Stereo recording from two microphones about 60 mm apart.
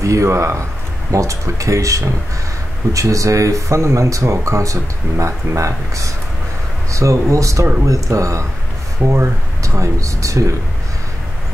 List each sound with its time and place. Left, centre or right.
0.0 s speech: right
9.0 s speech: right
9.6 s speech: right